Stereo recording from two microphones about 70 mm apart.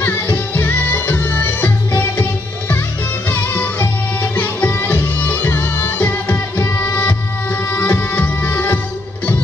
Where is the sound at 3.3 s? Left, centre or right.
Left.